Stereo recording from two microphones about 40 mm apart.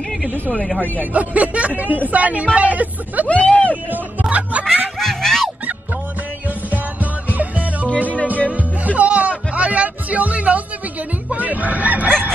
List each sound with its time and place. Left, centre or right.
1.1 s speech: right
3.3 s speech: left
3.9 s speech: right
4.9 s music: centre
7.2 s music: right
11.3 s fowl: right